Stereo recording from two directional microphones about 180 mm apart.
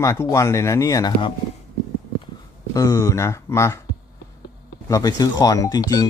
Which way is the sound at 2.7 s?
20° left (ahead or behind).